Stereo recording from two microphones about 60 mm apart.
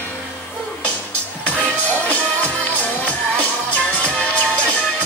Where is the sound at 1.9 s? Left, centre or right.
Left.